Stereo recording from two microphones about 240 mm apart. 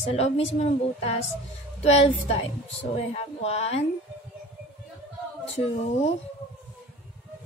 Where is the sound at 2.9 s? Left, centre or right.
Left.